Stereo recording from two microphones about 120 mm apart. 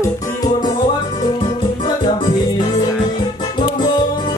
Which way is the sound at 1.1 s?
40° left (ahead or behind).